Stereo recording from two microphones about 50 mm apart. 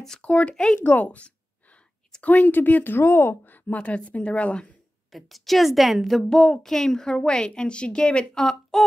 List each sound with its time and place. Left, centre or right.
0.2 s a woman's voice: left
0.8 s a sound: left
2.2 s speech: left
3.4 s a woman's voice: left
5.1 s a woman's voice: centre
8.7 s a sound: centre